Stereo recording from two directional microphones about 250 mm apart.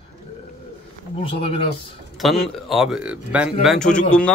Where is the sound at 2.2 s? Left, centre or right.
Centre.